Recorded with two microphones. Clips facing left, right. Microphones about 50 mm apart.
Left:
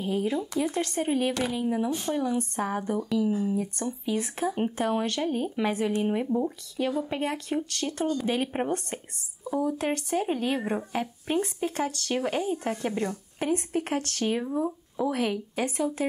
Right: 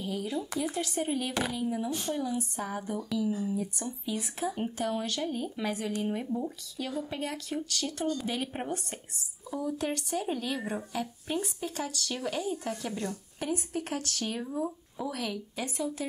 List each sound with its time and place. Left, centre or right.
0.0 s a woman's voice: left
15.6 s speech: left